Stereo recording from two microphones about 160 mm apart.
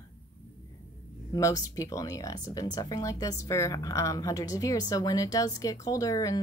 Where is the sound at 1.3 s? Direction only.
20° left (ahead or behind).